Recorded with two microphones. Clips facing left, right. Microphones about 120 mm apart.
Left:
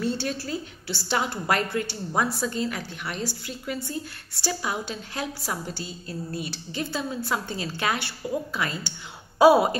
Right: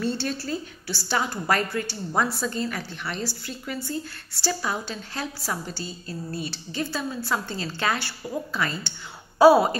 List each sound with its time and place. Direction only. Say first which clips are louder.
0.0 s a woman's voice: even; 15° left (ahead or behind)